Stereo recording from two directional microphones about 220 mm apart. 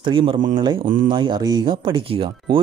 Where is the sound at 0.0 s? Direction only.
25° right (ahead or behind).